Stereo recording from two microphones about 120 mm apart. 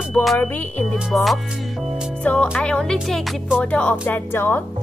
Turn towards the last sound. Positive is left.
turn(degrees=20)  # may be behind; listen again after turning